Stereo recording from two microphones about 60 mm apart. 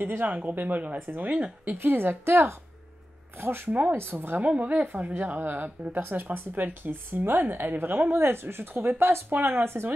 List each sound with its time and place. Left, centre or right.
0.2 s speech: right
1.8 s speech: right
3.9 s speech: right
4.4 s speech: right